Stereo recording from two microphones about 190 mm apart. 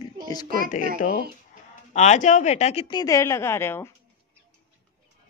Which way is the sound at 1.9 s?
35° left (ahead or behind).